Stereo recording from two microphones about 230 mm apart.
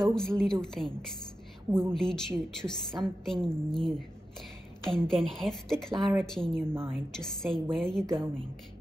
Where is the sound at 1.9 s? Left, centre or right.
Centre.